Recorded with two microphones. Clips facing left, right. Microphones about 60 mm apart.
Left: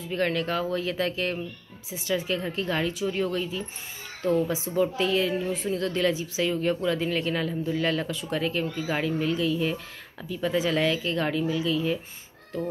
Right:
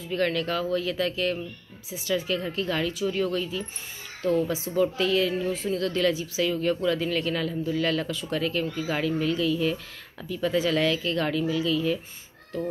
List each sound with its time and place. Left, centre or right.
0.1 s a woman's voice: left